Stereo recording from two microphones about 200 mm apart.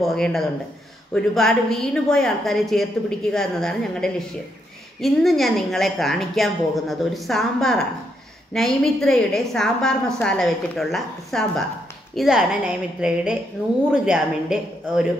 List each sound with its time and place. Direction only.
0.0 s a woman's voice: centre (ahead or behind)